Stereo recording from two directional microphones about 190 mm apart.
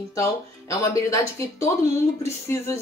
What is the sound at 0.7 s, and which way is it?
A woman's voice, 15° left (ahead or behind).